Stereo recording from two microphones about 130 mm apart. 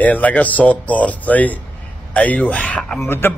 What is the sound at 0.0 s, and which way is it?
Speech, 10° left (ahead or behind).